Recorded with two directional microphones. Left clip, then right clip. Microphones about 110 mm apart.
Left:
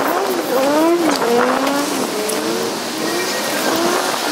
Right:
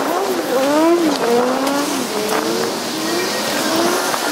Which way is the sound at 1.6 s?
5° right (ahead or behind).